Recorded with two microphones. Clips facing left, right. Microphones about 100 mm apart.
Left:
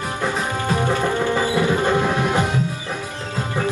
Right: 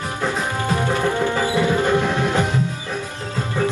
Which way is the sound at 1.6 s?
15° left (ahead or behind).